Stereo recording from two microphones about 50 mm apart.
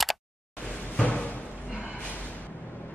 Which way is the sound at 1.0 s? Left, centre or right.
Left.